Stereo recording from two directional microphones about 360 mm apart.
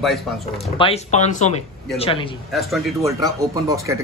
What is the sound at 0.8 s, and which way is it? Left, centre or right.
Speech, centre.